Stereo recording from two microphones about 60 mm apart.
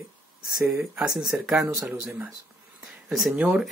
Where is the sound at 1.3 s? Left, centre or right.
Right.